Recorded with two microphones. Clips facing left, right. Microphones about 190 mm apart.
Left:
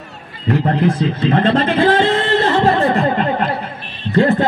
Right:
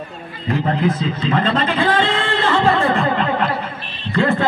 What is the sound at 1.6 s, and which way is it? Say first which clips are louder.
Speech: left 4 dB; 45° left (ahead or behind).